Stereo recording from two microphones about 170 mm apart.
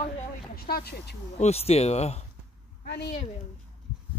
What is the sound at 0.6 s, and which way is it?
Speech, 65° left (ahead or behind).